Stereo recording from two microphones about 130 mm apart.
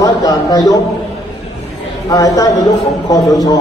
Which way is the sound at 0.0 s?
30° left (ahead or behind).